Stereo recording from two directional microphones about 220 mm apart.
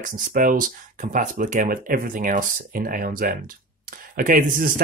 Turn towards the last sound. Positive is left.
turn(degrees=-40)  # may be behind; listen again after turning